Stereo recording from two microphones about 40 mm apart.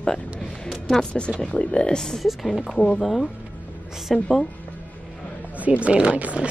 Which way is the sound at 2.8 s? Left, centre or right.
Left.